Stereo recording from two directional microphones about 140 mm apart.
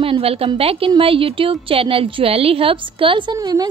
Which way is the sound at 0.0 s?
40° right (ahead or behind).